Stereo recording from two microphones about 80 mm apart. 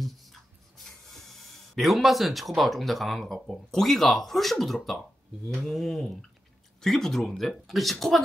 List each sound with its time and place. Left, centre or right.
0.0 s speech: centre